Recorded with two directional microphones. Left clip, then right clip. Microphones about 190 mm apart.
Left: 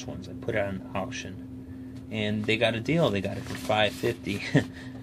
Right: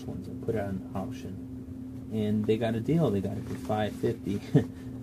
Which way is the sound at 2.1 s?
35° left (ahead or behind).